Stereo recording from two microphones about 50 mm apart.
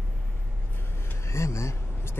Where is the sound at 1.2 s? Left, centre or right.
Left.